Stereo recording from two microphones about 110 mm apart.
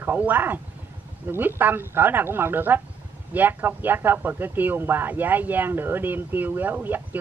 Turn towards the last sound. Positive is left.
turn(degrees=-15)  # may be behind; listen again after turning